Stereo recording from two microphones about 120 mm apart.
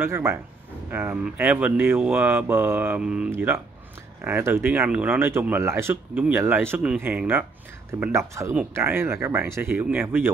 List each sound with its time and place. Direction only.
0.0 s speech: 20° right (ahead or behind)